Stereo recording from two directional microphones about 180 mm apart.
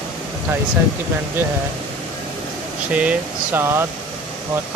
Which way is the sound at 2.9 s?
5° right (ahead or behind).